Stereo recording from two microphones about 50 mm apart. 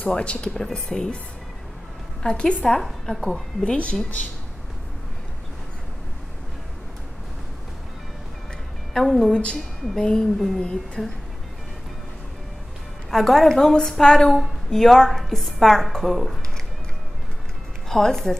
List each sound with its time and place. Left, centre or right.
0.0 s speech: left
0.6 s speech: centre
2.2 s speech: centre
8.9 s a woman's voice: centre
9.3 s speech: left
11.0 s a woman's voice: centre
13.1 s a woman's voice: centre
17.8 s speech: centre